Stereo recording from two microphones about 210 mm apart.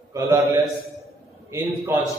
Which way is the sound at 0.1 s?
15° right (ahead or behind).